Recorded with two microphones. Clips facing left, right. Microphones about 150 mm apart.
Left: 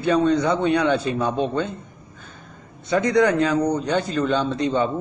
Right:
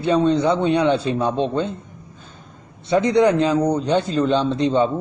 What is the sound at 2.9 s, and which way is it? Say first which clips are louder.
A man's voice: right 2 dB; 30° right (ahead or behind).